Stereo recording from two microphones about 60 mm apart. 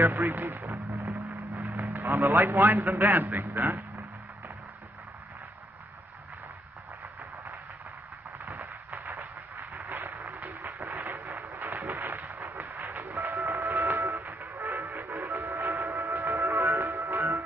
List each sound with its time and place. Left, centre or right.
0.0 s a man's voice: right
0.3 s a sound: right
1.7 s a man's voice: right
8.5 s a sound: right
12.6 s music: right
13.7 s music: right
15.9 s music: right
16.3 s music: right